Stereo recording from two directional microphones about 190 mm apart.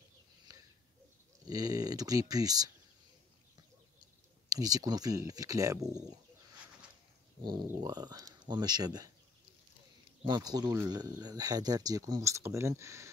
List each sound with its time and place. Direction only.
1.5 s speech: 20° right (ahead or behind)
4.5 s speech: 20° right (ahead or behind)
7.6 s speech: 20° right (ahead or behind)
10.2 s speech: 20° right (ahead or behind)